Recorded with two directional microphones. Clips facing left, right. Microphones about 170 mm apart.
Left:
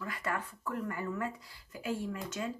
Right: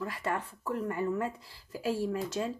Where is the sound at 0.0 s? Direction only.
30° right (ahead or behind).